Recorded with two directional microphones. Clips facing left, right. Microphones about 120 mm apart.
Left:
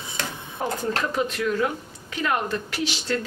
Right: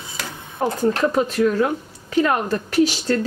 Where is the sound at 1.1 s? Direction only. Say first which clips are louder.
Right 6 dB; 40° right (ahead or behind).